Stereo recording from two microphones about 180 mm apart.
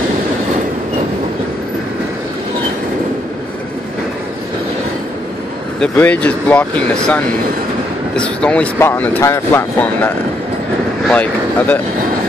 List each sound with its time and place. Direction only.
5.8 s speech: 5° left (ahead or behind)